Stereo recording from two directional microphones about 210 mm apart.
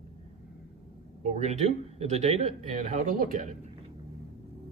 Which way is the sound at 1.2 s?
30° right (ahead or behind).